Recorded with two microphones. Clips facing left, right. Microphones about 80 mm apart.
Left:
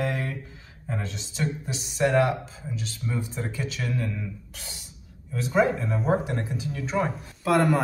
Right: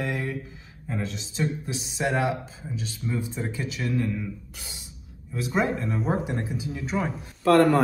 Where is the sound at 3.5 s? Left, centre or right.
Centre.